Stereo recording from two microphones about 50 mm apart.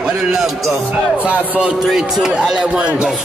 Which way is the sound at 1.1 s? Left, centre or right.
Right.